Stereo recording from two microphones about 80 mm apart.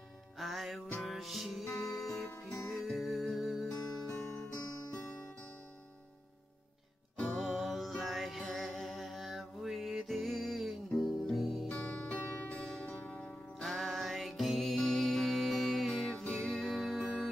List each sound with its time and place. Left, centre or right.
0.4 s music: centre
7.2 s music: centre
11.7 s music: centre
12.2 s music: left
12.4 s music: centre
13.6 s music: centre